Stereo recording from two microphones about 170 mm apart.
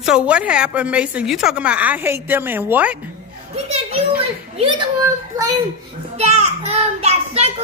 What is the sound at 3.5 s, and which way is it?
Speech, 35° right (ahead or behind).